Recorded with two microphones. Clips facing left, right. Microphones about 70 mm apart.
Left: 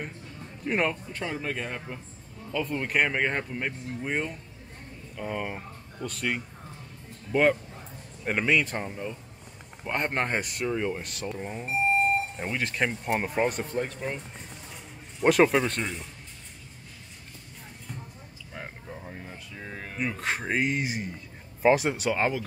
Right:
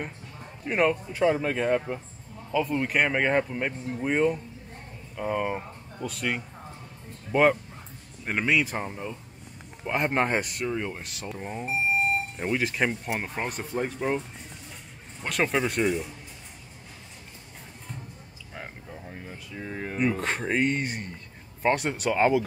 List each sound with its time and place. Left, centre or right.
0.7 s speech: centre
8.3 s speech: centre
13.9 s speech: centre
15.2 s speech: centre
18.9 s a sound: centre
20.0 s speech: centre